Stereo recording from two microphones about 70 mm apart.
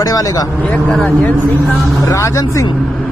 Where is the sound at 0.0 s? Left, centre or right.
Left.